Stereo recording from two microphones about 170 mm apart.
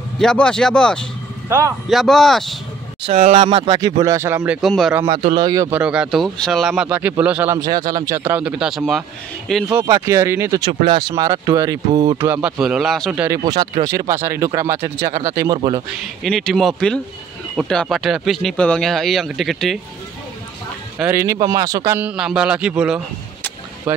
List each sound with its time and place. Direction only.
0.2 s speech: 5° left (ahead or behind)
3.3 s speech: 35° right (ahead or behind)
3.8 s speech: 20° right (ahead or behind); by 4.9 s centre (ahead or behind)
5.0 s speech: 30° right (ahead or behind)
5.7 s speech: 5° right (ahead or behind)
6.7 s speech: 10° right (ahead or behind)
7.5 s speech: 25° right (ahead or behind)
8.3 s speech: 5° right (ahead or behind)
9.8 s speech: 15° right (ahead or behind); by 13.2 s centre (ahead or behind)
13.5 s speech: 25° right (ahead or behind)
16.0 s speech: centre (ahead or behind)
21.0 s speech: 15° right (ahead or behind)